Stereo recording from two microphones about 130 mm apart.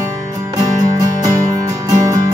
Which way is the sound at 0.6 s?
25° right (ahead or behind).